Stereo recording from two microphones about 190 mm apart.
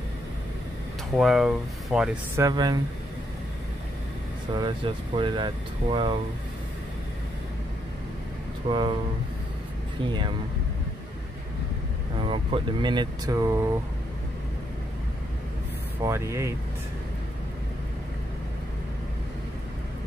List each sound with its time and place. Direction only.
1.1 s speech: centre (ahead or behind)
2.3 s speech: 20° right (ahead or behind)
4.6 s speech: 25° right (ahead or behind)
8.6 s speech: 25° right (ahead or behind)
10.0 s speech: 25° right (ahead or behind)
12.2 s speech: 30° right (ahead or behind)
16.0 s speech: 15° right (ahead or behind)